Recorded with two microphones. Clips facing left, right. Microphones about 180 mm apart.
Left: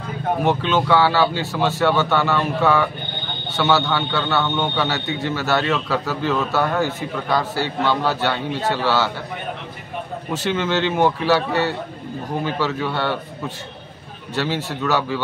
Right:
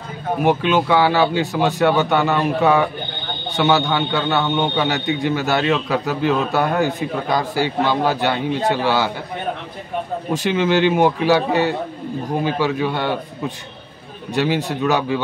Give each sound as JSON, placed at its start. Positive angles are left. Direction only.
{"t": 0.4, "sound": "a man's voice", "side_deg": -10}
{"t": 10.3, "sound": "a man's voice", "side_deg": -15}
{"t": 14.3, "sound": "a man's voice", "side_deg": -15}